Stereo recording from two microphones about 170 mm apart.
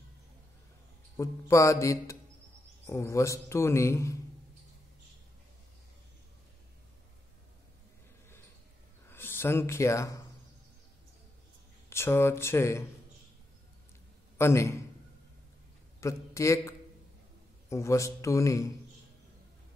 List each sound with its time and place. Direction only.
1.1 s a man's voice: 20° left (ahead or behind)
9.1 s speech: 15° left (ahead or behind)
11.9 s a man's voice: 15° left (ahead or behind)
14.4 s a man's voice: 15° left (ahead or behind)
16.0 s a man's voice: 15° left (ahead or behind)